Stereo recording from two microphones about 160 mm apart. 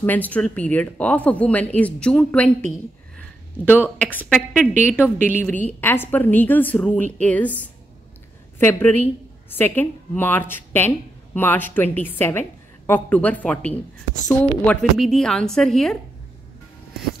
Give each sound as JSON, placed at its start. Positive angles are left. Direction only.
{"t": 0.0, "sound": "a woman's voice", "side_deg": 10}
{"t": 3.5, "sound": "a woman's voice", "side_deg": 15}
{"t": 8.5, "sound": "a woman's voice", "side_deg": 15}